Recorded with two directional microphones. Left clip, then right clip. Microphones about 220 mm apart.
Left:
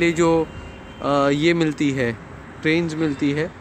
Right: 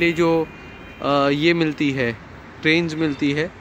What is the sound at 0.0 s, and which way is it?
Speech, centre (ahead or behind).